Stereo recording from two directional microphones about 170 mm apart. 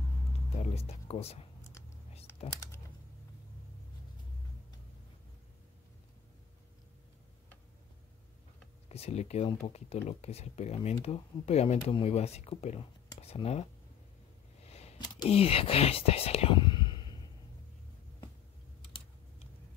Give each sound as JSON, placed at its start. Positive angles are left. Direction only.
{"t": 0.6, "sound": "speech", "side_deg": 35}
{"t": 1.6, "sound": "whispering", "side_deg": 15}
{"t": 8.8, "sound": "speech", "side_deg": 40}
{"t": 14.6, "sound": "a sound", "side_deg": 40}
{"t": 15.2, "sound": "speech", "side_deg": 35}